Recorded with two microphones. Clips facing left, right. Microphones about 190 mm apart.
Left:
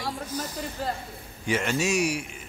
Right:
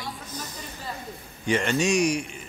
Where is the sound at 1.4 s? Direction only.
5° left (ahead or behind).